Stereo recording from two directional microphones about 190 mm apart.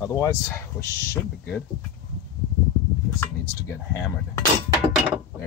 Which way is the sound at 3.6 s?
15° left (ahead or behind).